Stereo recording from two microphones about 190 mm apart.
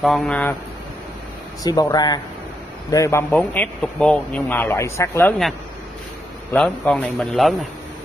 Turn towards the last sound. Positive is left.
turn(degrees=0)  # may be behind; listen again after turning